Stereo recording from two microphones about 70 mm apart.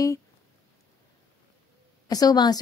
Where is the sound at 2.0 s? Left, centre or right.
Left.